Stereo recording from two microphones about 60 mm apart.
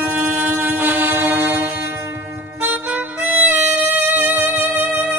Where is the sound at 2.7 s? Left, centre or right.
Right.